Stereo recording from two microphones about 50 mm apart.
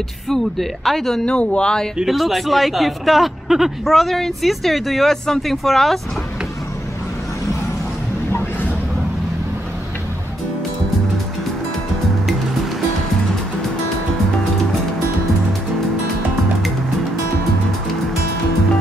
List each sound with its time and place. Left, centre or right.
0.3 s speech: centre
1.2 s speech: left
2.0 s speech: centre
5.1 s speech: centre